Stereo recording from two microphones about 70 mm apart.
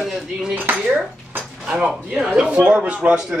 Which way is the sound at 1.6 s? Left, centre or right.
Centre.